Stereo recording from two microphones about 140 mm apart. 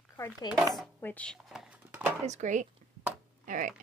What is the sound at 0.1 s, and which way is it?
Chopping, 25° left (ahead or behind).